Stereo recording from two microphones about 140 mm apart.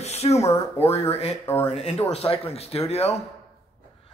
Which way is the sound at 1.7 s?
50° left (ahead or behind).